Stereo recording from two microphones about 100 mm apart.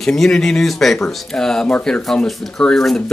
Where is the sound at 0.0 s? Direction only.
5° left (ahead or behind).